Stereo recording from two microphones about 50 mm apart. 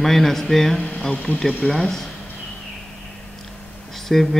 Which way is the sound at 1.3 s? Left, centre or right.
Left.